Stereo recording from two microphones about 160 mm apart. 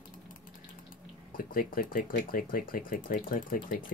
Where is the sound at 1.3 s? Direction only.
60° left (ahead or behind).